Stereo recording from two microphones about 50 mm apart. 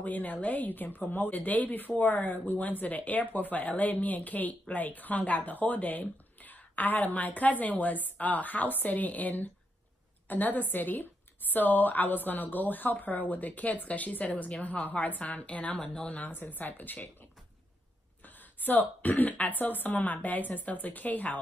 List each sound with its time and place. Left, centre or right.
0.0 s a woman's voice: left
18.6 s a woman's voice: left